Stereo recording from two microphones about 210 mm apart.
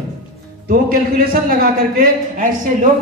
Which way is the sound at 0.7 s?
45° right (ahead or behind).